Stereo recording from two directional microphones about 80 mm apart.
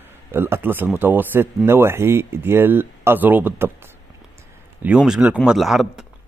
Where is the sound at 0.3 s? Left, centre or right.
Right.